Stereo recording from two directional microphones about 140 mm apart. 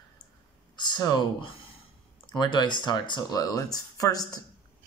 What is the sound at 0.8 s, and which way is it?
Speech, 30° left (ahead or behind).